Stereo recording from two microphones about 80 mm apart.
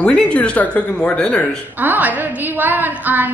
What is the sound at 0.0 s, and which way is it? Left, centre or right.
Speech, centre.